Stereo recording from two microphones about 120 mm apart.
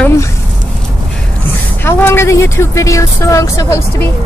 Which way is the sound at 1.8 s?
20° left (ahead or behind).